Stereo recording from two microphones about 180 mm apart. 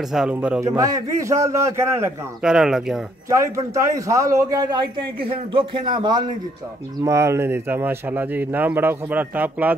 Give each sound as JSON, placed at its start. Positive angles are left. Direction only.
{"t": 0.1, "sound": "speech", "side_deg": -5}
{"t": 2.4, "sound": "speech", "side_deg": -5}
{"t": 3.5, "sound": "a man's voice", "side_deg": -20}